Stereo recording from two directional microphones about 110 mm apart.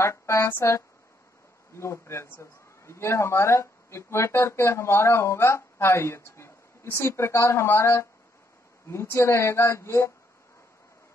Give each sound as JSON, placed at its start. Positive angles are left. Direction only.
{"t": 0.0, "sound": "a man's voice", "side_deg": 25}